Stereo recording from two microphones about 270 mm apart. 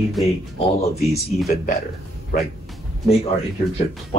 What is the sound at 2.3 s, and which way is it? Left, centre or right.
Speech, left.